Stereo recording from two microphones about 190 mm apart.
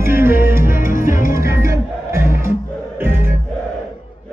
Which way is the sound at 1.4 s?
15° right (ahead or behind).